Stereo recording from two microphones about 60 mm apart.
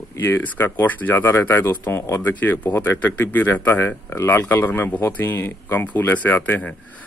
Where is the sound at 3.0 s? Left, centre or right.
Left.